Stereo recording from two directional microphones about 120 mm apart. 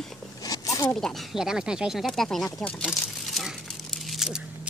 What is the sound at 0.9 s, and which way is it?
Speech, 5° left (ahead or behind).